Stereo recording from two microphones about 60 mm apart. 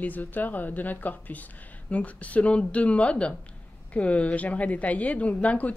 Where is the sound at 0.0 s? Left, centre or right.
Left.